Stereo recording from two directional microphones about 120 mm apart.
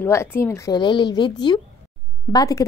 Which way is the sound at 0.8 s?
40° left (ahead or behind).